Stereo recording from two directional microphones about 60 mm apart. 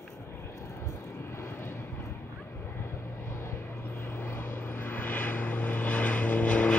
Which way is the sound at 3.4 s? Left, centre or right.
Left.